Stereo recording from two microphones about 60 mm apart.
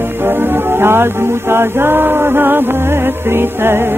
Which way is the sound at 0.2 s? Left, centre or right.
Right.